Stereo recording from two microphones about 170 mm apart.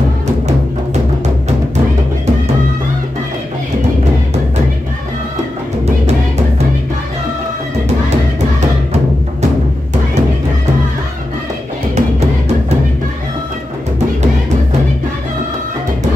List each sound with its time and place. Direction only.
11.9 s music: 40° right (ahead or behind)